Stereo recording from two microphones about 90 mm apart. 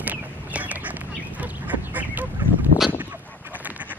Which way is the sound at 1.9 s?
20° right (ahead or behind).